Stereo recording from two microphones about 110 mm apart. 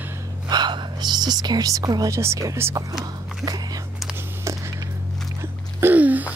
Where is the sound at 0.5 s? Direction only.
40° right (ahead or behind); by 2.8 s 25° right (ahead or behind).